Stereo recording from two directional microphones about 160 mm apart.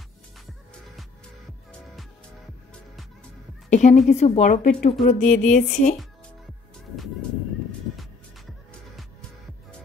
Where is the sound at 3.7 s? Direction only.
50° left (ahead or behind).